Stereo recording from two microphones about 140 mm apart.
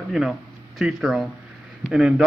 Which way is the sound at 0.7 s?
Centre (ahead or behind).